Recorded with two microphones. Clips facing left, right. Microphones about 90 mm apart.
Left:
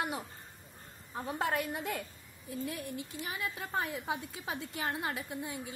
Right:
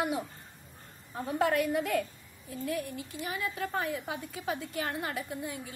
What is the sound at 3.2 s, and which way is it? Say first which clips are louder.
A woman's voice: right 7 dB; 20° left (ahead or behind).